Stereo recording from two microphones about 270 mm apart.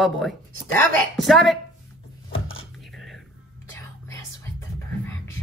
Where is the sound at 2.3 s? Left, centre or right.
Left.